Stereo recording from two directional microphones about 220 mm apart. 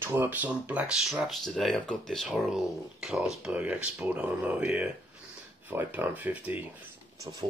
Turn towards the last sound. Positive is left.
turn(degrees=-15)  # may be behind; listen again after turning